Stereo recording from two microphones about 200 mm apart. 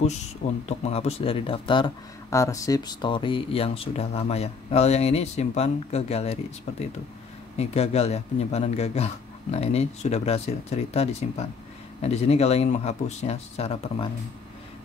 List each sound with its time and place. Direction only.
0.7 s speech: 30° left (ahead or behind)
7.5 s speech: 30° left (ahead or behind)